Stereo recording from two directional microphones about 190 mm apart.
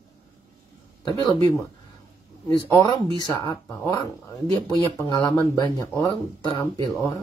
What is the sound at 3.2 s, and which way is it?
Speech, 20° left (ahead or behind).